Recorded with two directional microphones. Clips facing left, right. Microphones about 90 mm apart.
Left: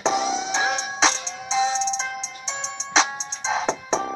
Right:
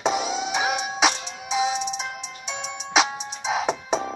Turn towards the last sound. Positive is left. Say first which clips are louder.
# even
turn(degrees=-10)  # may be behind; listen again after turning